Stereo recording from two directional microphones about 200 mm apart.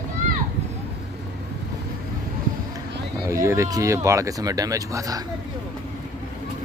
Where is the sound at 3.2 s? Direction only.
15° right (ahead or behind).